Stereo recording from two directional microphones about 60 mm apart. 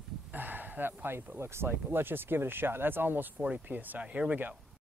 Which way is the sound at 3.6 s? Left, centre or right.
Right.